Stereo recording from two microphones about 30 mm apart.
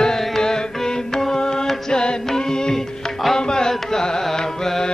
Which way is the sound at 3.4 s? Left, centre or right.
Left.